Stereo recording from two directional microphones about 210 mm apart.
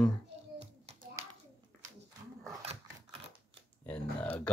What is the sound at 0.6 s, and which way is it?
Hands, 30° right (ahead or behind).